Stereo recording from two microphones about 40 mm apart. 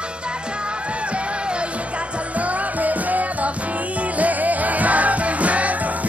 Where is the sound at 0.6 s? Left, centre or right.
Right.